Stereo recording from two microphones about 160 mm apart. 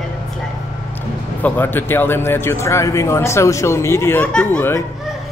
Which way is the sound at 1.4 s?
10° left (ahead or behind).